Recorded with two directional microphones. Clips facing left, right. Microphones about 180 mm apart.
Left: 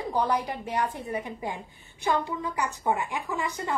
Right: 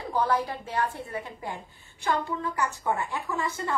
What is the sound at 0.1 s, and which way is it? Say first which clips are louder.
A woman's voice: right 1 dB; 15° left (ahead or behind).